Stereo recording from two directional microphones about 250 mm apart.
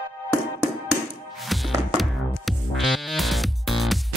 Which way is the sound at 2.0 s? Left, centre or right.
Centre.